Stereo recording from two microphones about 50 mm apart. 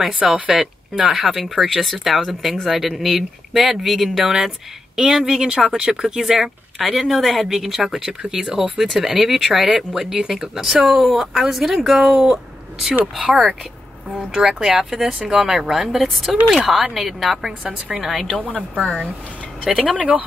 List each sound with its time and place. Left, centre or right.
0.3 s speech: centre
14.3 s speech: centre
19.9 s speech: right